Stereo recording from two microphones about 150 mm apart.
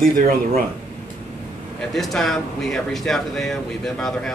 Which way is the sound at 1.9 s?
Centre (ahead or behind).